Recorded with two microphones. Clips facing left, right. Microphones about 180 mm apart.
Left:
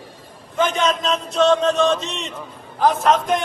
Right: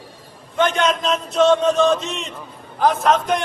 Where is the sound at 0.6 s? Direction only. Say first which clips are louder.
Right 1 dB; centre (ahead or behind).